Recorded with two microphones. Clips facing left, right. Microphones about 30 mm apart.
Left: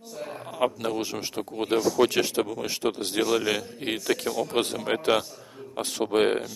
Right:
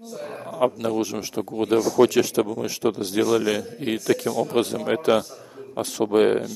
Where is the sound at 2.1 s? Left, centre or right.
Left.